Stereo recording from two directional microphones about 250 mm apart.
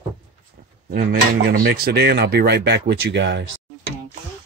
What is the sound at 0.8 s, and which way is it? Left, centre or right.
Speech, right.